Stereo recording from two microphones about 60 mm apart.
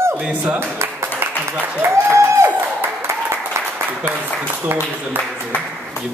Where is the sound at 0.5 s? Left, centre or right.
Right.